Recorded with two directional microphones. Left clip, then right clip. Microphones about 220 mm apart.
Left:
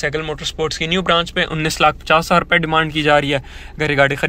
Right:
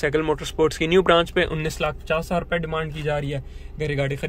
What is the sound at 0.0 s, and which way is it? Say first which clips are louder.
Speech: left 1 dB; 15° right (ahead or behind).